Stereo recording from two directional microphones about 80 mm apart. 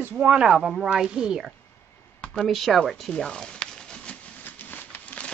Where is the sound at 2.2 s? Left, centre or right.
Centre.